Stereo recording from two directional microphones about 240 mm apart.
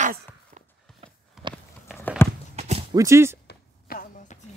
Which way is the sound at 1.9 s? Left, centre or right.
Centre.